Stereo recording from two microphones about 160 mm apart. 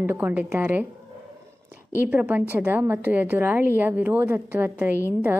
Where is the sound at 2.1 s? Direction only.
10° right (ahead or behind).